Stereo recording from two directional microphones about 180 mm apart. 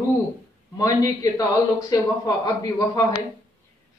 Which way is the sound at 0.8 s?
20° left (ahead or behind).